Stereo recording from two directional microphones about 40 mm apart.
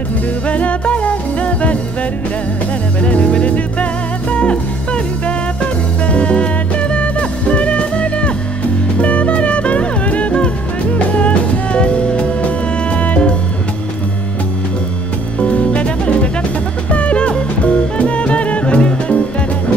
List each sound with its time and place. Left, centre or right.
0.5 s music: left
3.0 s music: left
6.0 s music: left
15.4 s music: left